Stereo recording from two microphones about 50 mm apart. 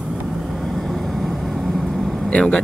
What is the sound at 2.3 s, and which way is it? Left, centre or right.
Speech, centre.